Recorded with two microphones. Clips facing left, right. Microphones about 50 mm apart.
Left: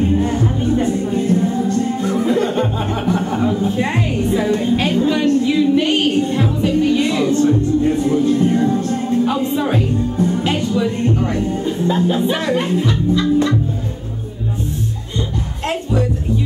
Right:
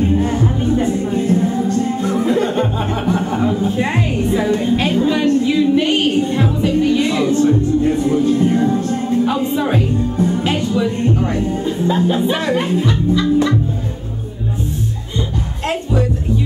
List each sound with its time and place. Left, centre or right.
0.2 s music: centre
10.8 s speech: centre
11.6 s music: centre
12.4 s speech: centre